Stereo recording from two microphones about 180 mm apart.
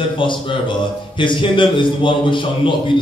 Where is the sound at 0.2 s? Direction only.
25° left (ahead or behind).